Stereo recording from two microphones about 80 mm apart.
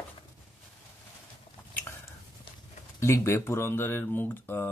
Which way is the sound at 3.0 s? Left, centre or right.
Left.